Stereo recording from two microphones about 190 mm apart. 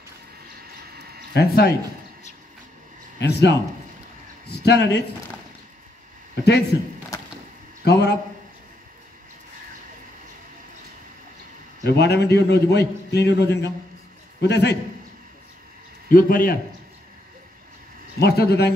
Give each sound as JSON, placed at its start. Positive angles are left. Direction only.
{"t": 1.3, "sound": "a man's voice", "side_deg": 55}
{"t": 3.2, "sound": "a man's voice", "side_deg": 65}
{"t": 6.4, "sound": "a man's voice", "side_deg": 60}
{"t": 7.1, "sound": "a sound", "side_deg": 15}
{"t": 7.8, "sound": "a man's voice", "side_deg": 60}
{"t": 11.8, "sound": "a man's voice", "side_deg": 60}
{"t": 16.1, "sound": "a man's voice", "side_deg": 50}
{"t": 18.2, "sound": "a man's voice", "side_deg": 60}